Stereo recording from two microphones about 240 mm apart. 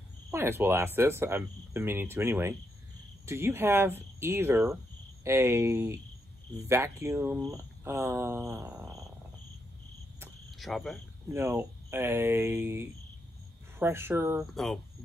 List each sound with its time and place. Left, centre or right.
0.3 s speech: centre
10.2 s cricket: centre
11.2 s speech: centre
14.5 s speech: centre